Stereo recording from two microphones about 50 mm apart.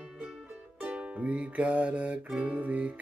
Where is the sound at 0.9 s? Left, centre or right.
Right.